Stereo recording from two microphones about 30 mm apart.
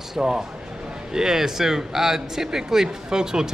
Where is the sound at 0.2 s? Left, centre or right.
Right.